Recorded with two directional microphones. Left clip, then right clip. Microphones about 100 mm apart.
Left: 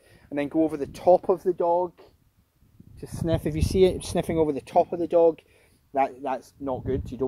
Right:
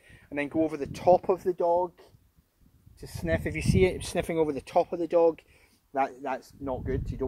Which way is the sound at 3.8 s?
55° left (ahead or behind).